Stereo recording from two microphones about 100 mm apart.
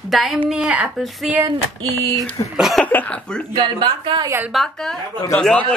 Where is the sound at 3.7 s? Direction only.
45° right (ahead or behind).